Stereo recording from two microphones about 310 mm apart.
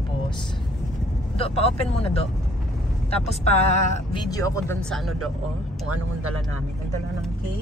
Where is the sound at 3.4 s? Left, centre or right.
Left; by 5.1 s centre.